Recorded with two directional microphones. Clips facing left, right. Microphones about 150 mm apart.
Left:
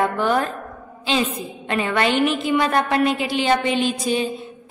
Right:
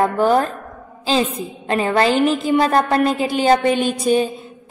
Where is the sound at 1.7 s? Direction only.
35° right (ahead or behind).